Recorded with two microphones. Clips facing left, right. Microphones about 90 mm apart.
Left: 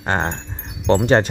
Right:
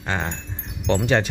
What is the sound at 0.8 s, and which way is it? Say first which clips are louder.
Speech: left 5 dB; 40° left (ahead or behind).